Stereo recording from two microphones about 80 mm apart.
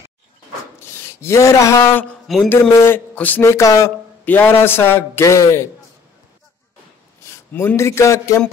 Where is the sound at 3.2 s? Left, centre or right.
Left.